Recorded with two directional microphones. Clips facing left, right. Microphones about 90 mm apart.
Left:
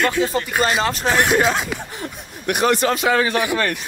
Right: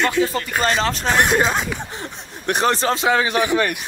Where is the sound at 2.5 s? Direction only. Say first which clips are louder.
Left 1 dB; 35° right (ahead or behind).